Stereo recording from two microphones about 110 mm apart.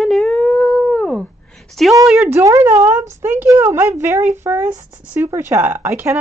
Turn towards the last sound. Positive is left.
turn(degrees=-20)  # may be behind; listen again after turning